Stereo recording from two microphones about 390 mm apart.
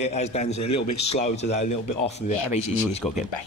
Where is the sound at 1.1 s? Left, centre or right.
Centre.